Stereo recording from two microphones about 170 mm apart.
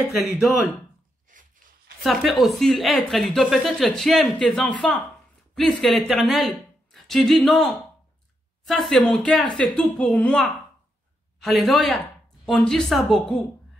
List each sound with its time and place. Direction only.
0.0 s speech: 5° right (ahead or behind)
1.3 s a sound: 50° right (ahead or behind)
2.0 s speech: centre (ahead or behind)